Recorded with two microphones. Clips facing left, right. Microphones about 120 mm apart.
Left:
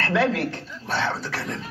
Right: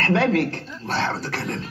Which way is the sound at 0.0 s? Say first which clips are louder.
Right 3 dB; 70° right (ahead or behind).